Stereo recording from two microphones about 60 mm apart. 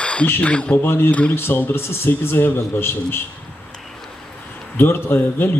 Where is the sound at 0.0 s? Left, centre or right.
Centre.